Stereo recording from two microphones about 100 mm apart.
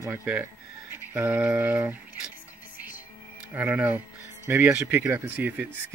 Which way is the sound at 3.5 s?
15° right (ahead or behind).